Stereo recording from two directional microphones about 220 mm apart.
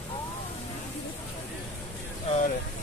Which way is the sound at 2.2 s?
30° left (ahead or behind).